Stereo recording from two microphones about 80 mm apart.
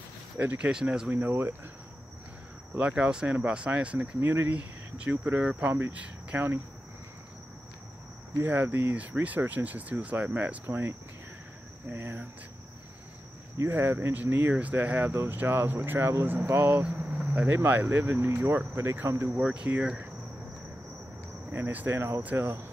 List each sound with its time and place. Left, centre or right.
0.4 s speech: right
0.7 s speech: centre
1.1 s speech: right
2.9 s speech: centre
8.4 s speech: right
13.7 s speech: right
17.0 s cricket: centre
17.3 s speech: right
19.4 s speech: centre
21.5 s speech: right